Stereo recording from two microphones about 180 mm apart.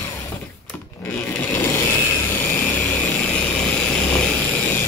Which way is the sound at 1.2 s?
15° left (ahead or behind).